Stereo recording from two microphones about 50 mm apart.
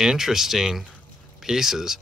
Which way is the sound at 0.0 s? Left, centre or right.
Centre.